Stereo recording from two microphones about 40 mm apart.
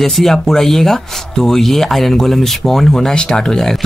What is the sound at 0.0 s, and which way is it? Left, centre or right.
Speech, centre.